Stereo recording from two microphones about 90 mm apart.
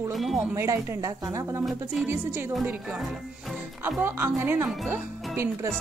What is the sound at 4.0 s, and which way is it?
Speech, 20° right (ahead or behind).